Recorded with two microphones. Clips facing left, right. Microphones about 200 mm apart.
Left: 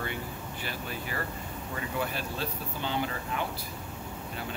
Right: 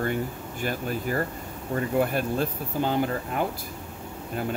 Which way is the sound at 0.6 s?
45° right (ahead or behind).